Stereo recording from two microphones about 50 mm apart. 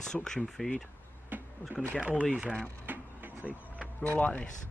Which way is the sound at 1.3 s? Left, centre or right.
Right.